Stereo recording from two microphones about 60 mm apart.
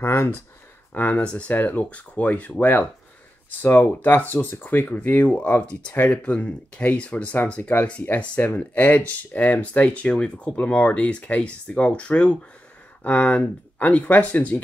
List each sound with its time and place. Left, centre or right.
0.0 s speech: left
0.9 s speech: left
3.6 s speech: left